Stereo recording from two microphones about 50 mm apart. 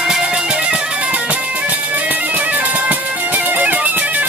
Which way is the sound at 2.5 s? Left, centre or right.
Right.